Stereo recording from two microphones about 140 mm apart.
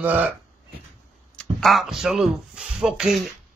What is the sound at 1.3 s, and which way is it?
Speech, centre (ahead or behind).